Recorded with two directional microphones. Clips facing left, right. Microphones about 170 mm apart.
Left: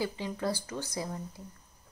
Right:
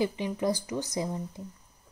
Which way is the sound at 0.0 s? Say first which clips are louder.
Right 5 dB; 20° right (ahead or behind).